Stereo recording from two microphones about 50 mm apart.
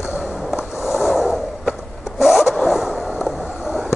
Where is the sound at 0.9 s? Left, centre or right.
Centre.